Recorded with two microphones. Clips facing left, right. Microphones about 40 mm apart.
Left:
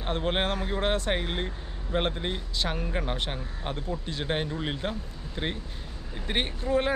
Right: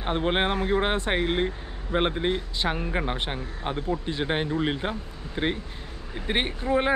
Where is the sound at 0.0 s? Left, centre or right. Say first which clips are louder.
Right 3 dB; centre.